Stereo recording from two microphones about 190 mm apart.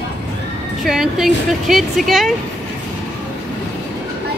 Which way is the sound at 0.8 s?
Centre (ahead or behind).